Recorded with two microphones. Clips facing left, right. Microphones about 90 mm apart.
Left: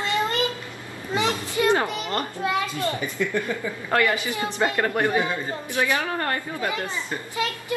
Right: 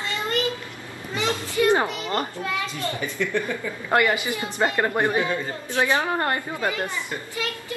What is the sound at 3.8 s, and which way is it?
Speech, 15° right (ahead or behind).